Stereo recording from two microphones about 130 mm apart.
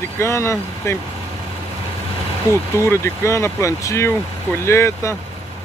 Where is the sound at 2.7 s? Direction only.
20° left (ahead or behind).